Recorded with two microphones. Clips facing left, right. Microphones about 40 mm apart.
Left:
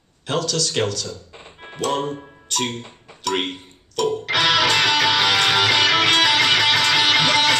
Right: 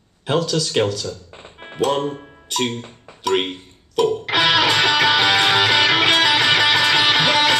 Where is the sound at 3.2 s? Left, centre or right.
Centre.